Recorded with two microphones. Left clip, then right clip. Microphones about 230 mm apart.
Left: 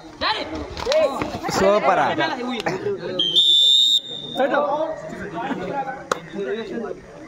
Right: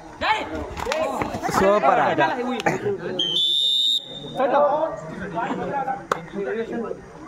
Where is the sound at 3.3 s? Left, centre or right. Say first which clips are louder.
Left 6 dB; left.